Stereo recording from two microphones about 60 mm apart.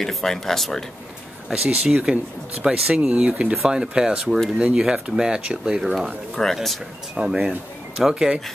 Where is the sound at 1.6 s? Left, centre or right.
Centre.